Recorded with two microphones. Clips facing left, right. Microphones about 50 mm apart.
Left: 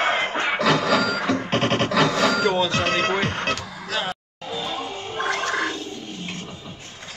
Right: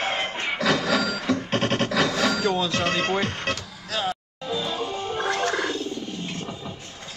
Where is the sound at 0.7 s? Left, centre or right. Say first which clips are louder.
Left 2 dB; left.